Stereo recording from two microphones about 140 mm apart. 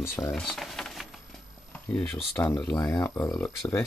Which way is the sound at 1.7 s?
10° left (ahead or behind).